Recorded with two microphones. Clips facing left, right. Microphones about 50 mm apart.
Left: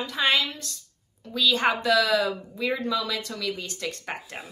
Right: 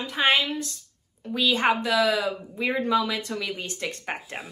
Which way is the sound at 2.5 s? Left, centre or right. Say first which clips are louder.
Right 5 dB; right.